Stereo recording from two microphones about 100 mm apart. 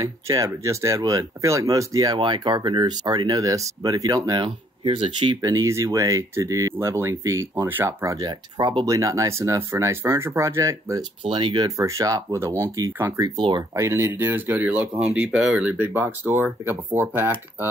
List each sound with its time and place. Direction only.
0.0 s speech: 35° right (ahead or behind)
2.1 s speech: 50° right (ahead or behind)
4.8 s speech: 60° right (ahead or behind)
5.4 s speech: 35° right (ahead or behind)
8.8 s speech: 35° right (ahead or behind)
11.2 s speech: 55° right (ahead or behind)
11.6 s speech: 35° right (ahead or behind)
13.4 s speech: 50° right (ahead or behind)
13.7 s speech: 30° right (ahead or behind); by 15.7 s 10° right (ahead or behind)
15.8 s speech: 20° right (ahead or behind)